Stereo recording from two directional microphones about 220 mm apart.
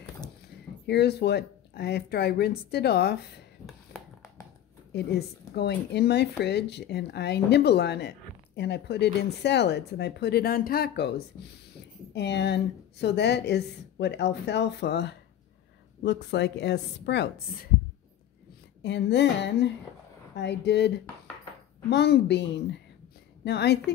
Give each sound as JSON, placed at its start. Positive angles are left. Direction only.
{"t": 0.8, "sound": "speech", "side_deg": 50}
{"t": 3.9, "sound": "a sound", "side_deg": 45}
{"t": 4.9, "sound": "speech", "side_deg": 50}
{"t": 18.8, "sound": "speech", "side_deg": 50}
{"t": 21.9, "sound": "speech", "side_deg": 50}